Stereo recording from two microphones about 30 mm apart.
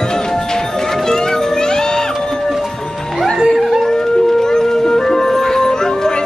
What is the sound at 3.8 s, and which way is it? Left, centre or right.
Music, centre.